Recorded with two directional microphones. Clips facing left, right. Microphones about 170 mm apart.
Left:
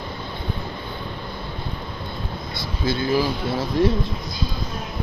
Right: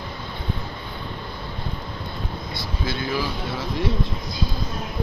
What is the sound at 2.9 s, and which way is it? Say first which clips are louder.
Speech: left 6 dB; 30° left (ahead or behind).